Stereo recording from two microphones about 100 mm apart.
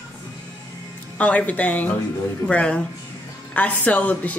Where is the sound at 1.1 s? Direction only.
15° left (ahead or behind).